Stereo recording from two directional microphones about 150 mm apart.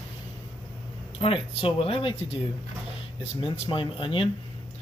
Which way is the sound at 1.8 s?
35° left (ahead or behind).